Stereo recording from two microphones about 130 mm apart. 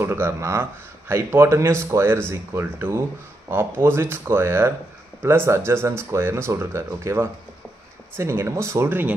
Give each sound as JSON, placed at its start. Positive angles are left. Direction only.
{"t": 0.0, "sound": "speech", "side_deg": -20}